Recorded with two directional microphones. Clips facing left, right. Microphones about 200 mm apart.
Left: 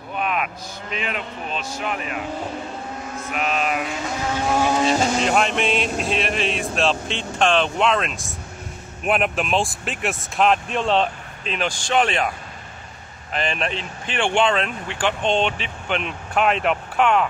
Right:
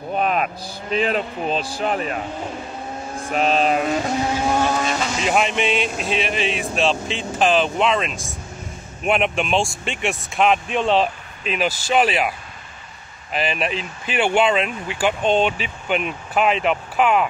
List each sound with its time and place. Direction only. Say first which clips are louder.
0.1 s speech: right 4 dB; 35° right (ahead or behind)
3.2 s mantra: right 6 dB; 30° right (ahead or behind)
4.5 s speech: left 1 dB; 5° left (ahead or behind)
4.8 s speech: left 4 dB; 35° left (ahead or behind)
5.2 s speech: even; 5° right (ahead or behind)
13.3 s speech: right 2 dB; 5° right (ahead or behind)